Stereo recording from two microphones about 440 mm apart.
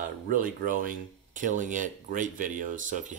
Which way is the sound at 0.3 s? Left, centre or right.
Centre.